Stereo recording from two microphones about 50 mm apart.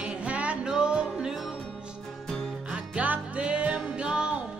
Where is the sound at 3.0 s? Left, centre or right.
Right.